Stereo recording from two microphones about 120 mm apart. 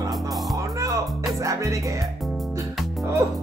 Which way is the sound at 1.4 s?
25° right (ahead or behind).